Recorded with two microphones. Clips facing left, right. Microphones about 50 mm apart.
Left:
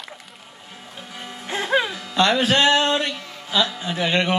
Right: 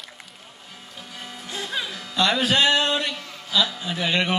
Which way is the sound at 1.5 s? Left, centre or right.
Left.